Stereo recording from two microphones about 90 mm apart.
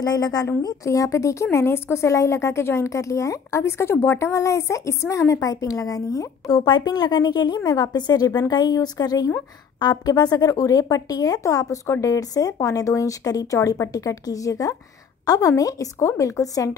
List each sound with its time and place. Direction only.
0.0 s a woman's voice: 50° left (ahead or behind)